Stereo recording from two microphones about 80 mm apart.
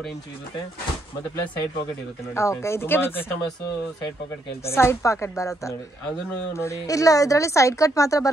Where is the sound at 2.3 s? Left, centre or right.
Left.